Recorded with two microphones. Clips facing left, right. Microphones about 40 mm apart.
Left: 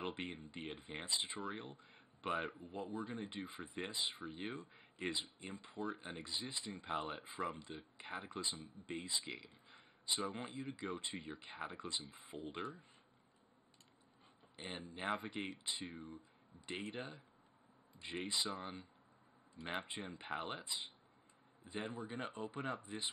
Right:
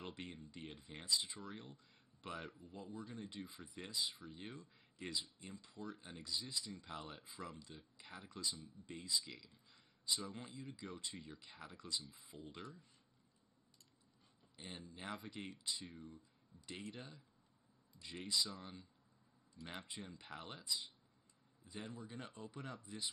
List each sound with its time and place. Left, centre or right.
0.0 s speech: left
14.6 s speech: left